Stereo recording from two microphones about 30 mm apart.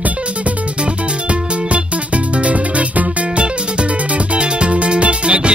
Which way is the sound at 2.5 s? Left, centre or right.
Right.